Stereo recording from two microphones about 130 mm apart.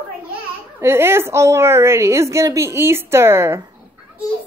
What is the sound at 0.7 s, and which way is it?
A woman's voice, 20° right (ahead or behind).